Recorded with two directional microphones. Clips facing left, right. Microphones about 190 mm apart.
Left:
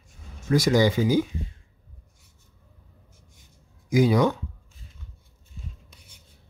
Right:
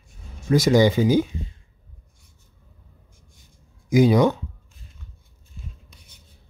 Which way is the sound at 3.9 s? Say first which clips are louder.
Right 3 dB; 20° right (ahead or behind).